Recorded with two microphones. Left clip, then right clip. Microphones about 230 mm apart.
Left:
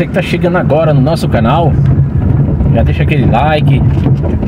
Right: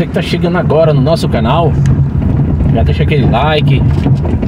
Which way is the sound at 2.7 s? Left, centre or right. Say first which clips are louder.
Even; centre.